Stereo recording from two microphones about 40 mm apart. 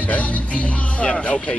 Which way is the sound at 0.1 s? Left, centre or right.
Left.